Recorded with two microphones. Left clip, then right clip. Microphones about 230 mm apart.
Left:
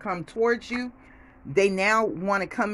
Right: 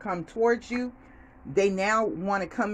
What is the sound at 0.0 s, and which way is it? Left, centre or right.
Speech, centre.